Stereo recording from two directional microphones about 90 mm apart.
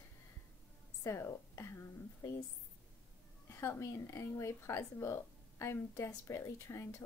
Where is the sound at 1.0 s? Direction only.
30° left (ahead or behind).